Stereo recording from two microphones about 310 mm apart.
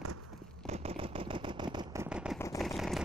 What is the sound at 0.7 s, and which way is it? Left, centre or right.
Vehicle, centre.